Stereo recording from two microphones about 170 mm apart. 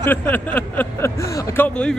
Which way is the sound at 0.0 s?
10° left (ahead or behind).